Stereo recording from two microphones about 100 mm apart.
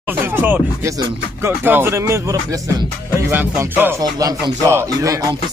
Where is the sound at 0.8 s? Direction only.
30° right (ahead or behind).